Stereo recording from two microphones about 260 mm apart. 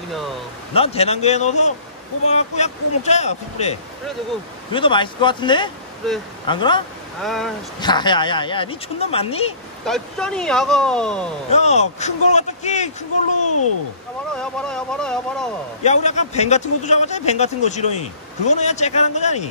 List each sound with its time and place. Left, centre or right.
0.7 s a man's voice: left
4.7 s a man's voice: centre
6.0 s speech: centre
6.4 s speech: centre
7.2 s speech: centre
7.8 s a man's voice: centre
9.8 s speech: centre
11.5 s a man's voice: left
14.3 s speech: centre
15.8 s a man's voice: left